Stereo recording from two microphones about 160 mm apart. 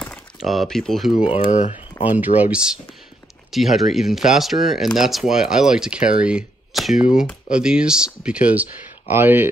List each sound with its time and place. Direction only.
0.4 s speech: centre (ahead or behind)
1.4 s speech: 50° left (ahead or behind)
2.0 s speech: 10° right (ahead or behind)